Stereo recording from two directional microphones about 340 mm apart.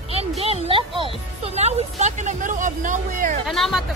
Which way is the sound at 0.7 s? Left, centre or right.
Centre.